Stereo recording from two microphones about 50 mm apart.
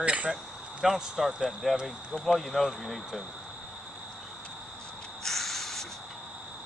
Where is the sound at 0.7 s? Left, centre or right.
Centre.